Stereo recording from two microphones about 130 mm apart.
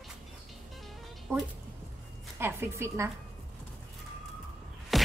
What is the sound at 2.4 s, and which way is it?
Speech, 20° right (ahead or behind).